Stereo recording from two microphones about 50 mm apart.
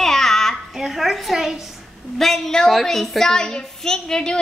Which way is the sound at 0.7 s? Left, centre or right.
Centre.